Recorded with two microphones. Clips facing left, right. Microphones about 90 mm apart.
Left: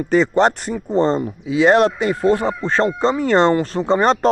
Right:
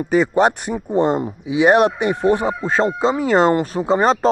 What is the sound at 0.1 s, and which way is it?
Speech, 10° right (ahead or behind).